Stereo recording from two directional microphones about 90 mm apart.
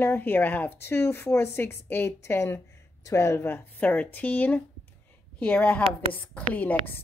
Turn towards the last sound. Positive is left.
turn(degrees=20)  # may be behind; listen again after turning